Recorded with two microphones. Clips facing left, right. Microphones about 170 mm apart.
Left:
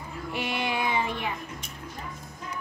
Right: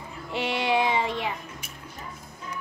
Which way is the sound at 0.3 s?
25° right (ahead or behind).